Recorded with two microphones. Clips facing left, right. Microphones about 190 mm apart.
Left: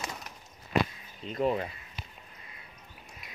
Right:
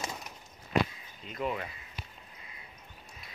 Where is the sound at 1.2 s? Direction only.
35° left (ahead or behind).